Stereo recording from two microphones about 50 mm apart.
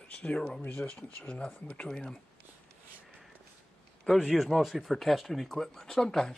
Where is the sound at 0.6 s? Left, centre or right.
Left.